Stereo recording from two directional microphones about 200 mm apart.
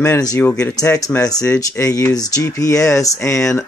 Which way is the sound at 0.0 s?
15° left (ahead or behind).